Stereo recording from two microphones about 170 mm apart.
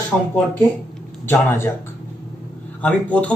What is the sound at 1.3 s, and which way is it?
Speech, 15° left (ahead or behind).